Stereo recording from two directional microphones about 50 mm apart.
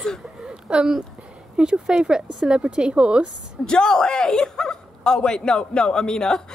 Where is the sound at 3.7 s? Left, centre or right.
Centre.